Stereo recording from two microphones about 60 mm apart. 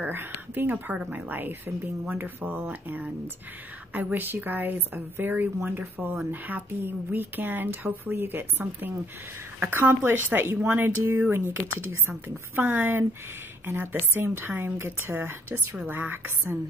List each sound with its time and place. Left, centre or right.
0.0 s a woman's voice: right